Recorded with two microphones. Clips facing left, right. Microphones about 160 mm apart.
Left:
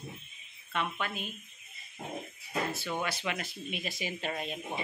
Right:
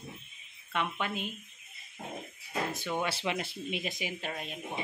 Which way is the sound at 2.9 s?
25° right (ahead or behind).